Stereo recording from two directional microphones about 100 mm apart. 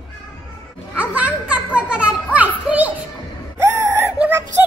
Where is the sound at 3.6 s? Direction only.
30° right (ahead or behind).